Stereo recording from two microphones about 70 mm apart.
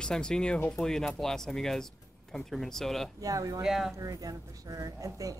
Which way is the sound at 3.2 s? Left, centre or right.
Right.